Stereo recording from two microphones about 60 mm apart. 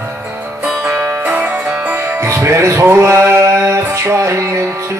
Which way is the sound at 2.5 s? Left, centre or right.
Right.